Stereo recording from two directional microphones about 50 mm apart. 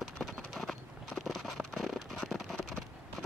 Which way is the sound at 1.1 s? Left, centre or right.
Centre.